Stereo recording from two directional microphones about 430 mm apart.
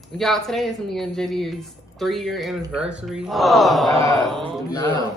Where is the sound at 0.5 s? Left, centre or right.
Centre.